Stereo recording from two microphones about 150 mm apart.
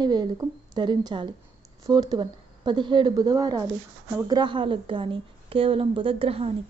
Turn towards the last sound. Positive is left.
turn(degrees=-40)  # may be behind; listen again after turning